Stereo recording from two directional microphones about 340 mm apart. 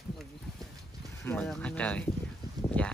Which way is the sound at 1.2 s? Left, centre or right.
Centre.